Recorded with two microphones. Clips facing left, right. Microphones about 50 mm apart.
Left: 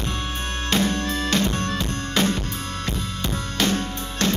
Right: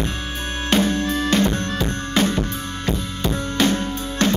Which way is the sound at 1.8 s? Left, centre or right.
Right.